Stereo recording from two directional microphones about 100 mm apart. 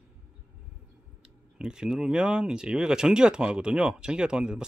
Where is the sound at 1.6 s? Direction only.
5° right (ahead or behind).